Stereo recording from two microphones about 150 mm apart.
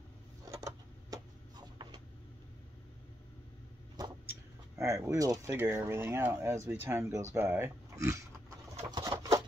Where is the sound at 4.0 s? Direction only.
25° right (ahead or behind).